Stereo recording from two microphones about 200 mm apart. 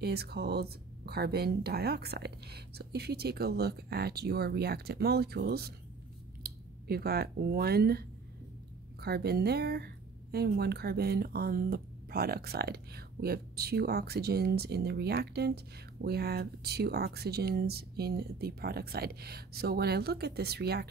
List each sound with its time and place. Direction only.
0.0 s speech: 55° right (ahead or behind)